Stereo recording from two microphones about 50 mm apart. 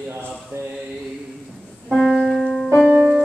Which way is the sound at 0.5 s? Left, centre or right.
Right.